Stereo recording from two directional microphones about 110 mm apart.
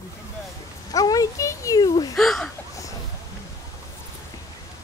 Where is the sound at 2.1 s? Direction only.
Centre (ahead or behind).